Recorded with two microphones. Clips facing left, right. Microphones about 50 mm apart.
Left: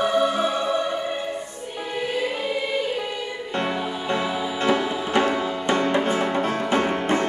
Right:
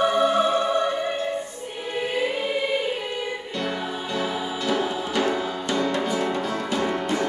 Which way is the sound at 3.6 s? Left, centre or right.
Left.